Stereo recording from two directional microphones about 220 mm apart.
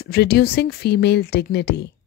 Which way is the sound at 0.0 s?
45° left (ahead or behind).